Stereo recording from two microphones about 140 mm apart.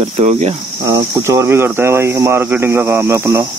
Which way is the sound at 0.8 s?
20° right (ahead or behind).